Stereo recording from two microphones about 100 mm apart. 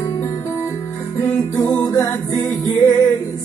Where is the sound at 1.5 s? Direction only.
25° left (ahead or behind).